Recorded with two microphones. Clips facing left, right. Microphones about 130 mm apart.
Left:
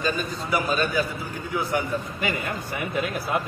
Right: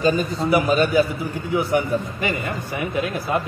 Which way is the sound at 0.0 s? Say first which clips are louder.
Right 7 dB; 25° right (ahead or behind).